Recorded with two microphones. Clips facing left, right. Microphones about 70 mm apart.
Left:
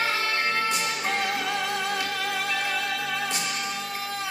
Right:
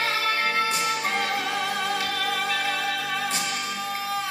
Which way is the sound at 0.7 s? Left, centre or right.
Centre.